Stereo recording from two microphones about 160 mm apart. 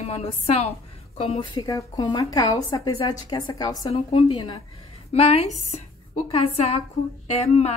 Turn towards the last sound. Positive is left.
turn(degrees=40)  # may be behind; listen again after turning